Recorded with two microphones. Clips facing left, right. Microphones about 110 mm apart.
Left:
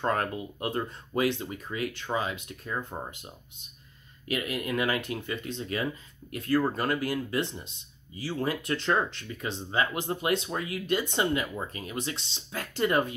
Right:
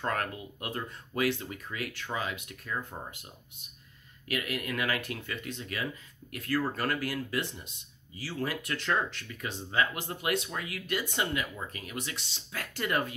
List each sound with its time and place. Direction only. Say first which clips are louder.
0.0 s speech: left 4 dB; 25° left (ahead or behind)
4.3 s speech: left 3 dB; 25° left (ahead or behind)